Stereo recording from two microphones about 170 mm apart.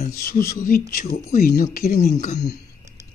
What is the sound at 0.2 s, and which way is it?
A man's voice, 55° left (ahead or behind).